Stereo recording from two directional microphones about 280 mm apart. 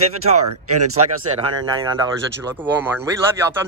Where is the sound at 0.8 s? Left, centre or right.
Right.